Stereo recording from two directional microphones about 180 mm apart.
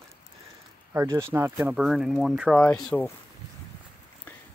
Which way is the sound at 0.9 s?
15° right (ahead or behind).